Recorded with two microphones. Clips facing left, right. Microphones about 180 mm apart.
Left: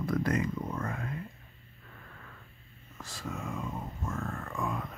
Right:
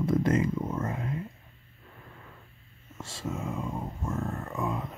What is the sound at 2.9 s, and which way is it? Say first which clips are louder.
Speech: right 4 dB; 25° right (ahead or behind).